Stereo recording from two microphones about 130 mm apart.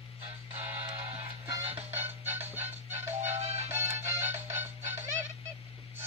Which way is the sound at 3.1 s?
60° right (ahead or behind).